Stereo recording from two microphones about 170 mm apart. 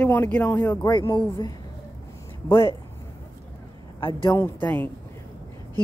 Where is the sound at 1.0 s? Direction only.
25° left (ahead or behind).